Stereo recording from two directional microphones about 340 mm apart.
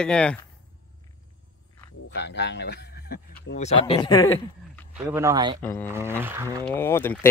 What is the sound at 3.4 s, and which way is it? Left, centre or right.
Speech, centre.